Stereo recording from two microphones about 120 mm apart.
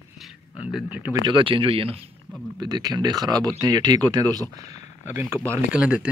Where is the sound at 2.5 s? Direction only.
35° right (ahead or behind).